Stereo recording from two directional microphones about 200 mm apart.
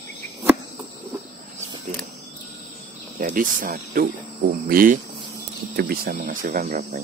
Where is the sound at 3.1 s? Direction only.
40° right (ahead or behind).